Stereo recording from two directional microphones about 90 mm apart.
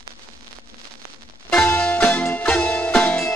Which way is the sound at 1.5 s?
25° left (ahead or behind).